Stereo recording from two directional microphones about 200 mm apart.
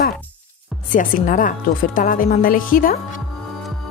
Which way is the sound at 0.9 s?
40° left (ahead or behind).